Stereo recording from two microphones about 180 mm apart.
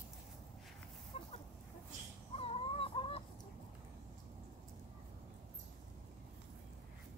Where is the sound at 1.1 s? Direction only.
35° left (ahead or behind).